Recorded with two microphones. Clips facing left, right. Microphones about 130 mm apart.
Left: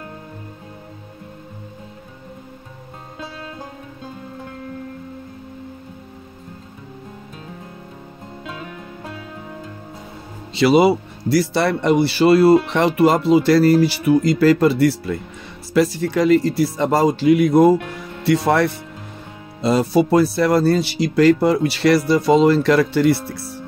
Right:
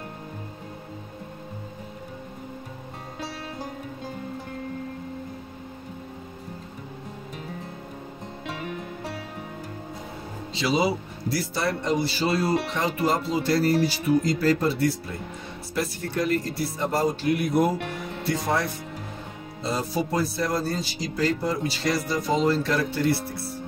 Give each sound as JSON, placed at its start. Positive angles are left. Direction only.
{"t": 10.5, "sound": "speech", "side_deg": 65}
{"t": 18.2, "sound": "speech", "side_deg": 75}